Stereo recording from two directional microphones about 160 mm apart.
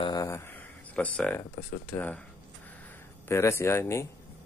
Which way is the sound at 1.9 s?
10° left (ahead or behind).